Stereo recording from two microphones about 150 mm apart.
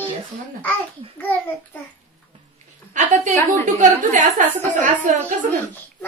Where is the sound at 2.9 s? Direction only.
55° right (ahead or behind).